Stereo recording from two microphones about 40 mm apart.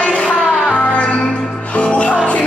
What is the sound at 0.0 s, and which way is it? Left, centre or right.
Music, left.